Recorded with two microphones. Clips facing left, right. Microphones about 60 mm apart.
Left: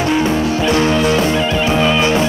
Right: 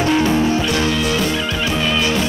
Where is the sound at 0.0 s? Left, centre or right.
Centre.